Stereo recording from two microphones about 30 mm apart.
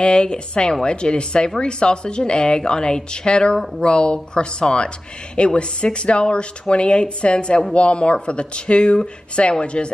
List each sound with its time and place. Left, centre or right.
0.0 s speech: left